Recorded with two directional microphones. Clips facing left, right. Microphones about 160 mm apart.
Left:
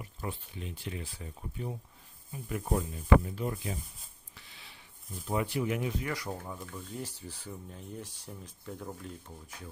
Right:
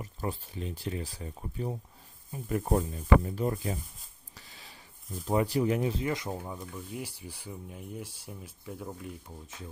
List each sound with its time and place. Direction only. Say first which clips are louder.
0.0 s speech: right 4 dB; 40° right (ahead or behind)
4.4 s a sound: right 3 dB; 40° right (ahead or behind)
5.2 s speech: right 5 dB; 40° right (ahead or behind); by 9.1 s 5° right (ahead or behind)